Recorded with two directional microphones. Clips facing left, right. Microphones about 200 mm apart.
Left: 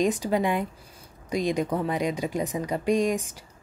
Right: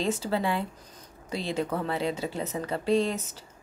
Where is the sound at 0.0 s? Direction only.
15° left (ahead or behind).